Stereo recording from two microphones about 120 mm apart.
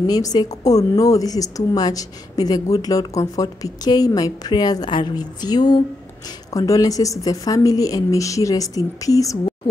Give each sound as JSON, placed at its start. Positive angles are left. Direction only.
{"t": 0.0, "sound": "a woman's voice", "side_deg": 35}